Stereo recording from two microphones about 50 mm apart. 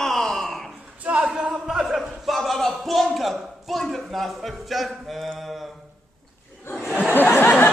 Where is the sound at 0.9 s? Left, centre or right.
Right.